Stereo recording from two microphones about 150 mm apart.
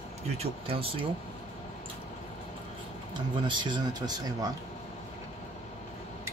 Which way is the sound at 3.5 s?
30° right (ahead or behind).